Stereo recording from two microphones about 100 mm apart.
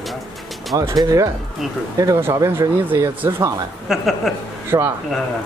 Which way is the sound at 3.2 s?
20° right (ahead or behind).